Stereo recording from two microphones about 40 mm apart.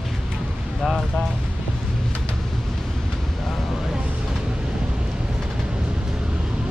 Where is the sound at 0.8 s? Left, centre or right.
Centre.